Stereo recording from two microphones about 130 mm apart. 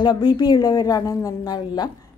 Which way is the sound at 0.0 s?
35° left (ahead or behind).